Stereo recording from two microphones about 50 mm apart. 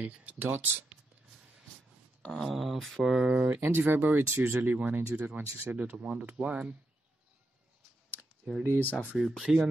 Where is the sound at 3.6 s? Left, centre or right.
Right.